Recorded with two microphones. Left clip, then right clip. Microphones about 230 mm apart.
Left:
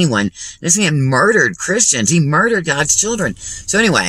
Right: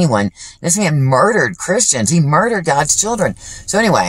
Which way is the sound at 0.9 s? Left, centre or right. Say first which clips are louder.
Right 1 dB; right.